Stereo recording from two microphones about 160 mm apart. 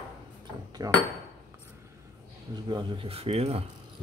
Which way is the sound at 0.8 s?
20° right (ahead or behind).